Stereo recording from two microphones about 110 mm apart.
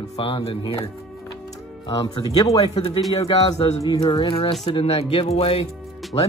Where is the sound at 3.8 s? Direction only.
40° left (ahead or behind).